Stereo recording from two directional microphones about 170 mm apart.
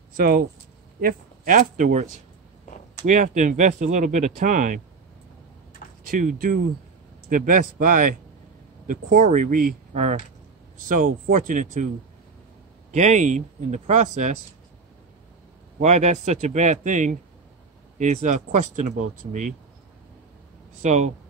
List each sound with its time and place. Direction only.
0.2 s speech: 60° right (ahead or behind)
3.1 s speech: 45° right (ahead or behind)
6.0 s speech: 55° right (ahead or behind)
12.9 s speech: 45° right (ahead or behind)
15.8 s speech: 45° right (ahead or behind)
20.8 s speech: 45° right (ahead or behind)